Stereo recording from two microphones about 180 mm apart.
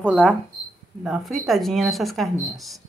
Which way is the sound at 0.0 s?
5° left (ahead or behind).